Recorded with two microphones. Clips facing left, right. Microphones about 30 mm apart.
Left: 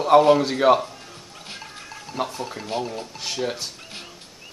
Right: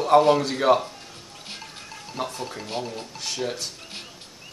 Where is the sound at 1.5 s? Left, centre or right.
Centre.